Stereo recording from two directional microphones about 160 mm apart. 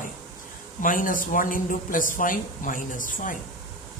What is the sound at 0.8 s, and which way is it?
Speech, 55° left (ahead or behind).